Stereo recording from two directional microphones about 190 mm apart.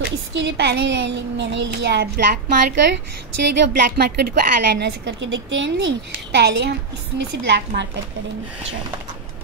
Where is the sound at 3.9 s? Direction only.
55° right (ahead or behind).